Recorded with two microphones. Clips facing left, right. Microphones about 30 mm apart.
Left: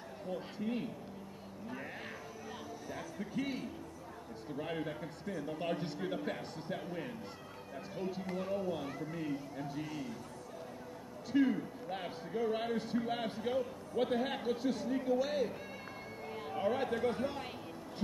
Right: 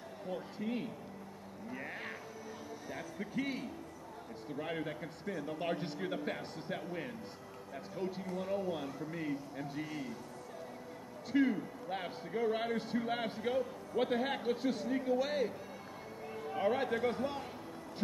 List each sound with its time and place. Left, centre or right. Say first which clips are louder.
0.3 s a man's voice: even; centre
1.7 s cat: right 2 dB; centre
2.9 s a man's voice: even; centre
8.5 s a man's voice: right 1 dB; centre
11.3 s a man's voice: even; centre
16.5 s a man's voice: right 1 dB; centre